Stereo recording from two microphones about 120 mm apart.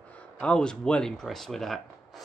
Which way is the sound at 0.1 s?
10° left (ahead or behind).